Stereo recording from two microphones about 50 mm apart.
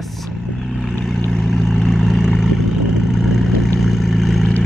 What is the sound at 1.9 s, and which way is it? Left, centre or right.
Vehicle, centre.